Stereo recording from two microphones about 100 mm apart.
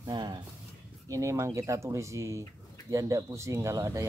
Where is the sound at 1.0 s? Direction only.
30° right (ahead or behind).